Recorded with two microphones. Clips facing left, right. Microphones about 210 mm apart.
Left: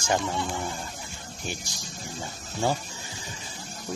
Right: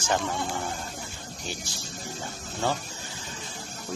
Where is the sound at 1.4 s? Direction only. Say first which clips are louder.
Left 1 dB; 15° left (ahead or behind).